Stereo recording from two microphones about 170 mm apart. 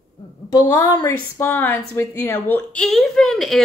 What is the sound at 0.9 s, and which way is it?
Speech, 15° left (ahead or behind).